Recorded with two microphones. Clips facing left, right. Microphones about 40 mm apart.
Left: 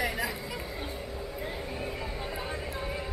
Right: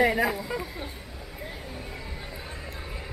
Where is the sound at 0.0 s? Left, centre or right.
Right.